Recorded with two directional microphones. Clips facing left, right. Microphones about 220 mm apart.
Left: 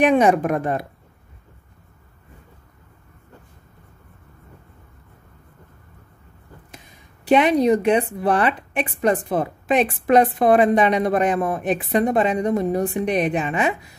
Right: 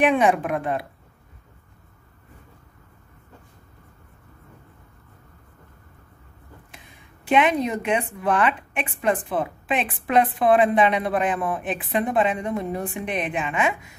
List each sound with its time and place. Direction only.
0.0 s speech: 40° left (ahead or behind)
7.2 s a woman's voice: 35° left (ahead or behind)